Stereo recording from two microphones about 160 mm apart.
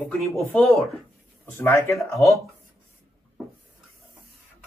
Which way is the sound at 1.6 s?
15° left (ahead or behind).